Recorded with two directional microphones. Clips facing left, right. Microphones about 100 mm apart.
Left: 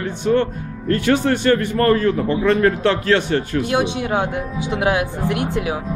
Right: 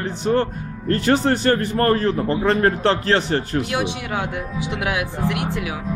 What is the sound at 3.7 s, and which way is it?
Speech, 30° left (ahead or behind).